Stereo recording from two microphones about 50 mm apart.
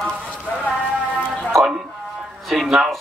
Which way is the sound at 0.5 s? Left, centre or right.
Left.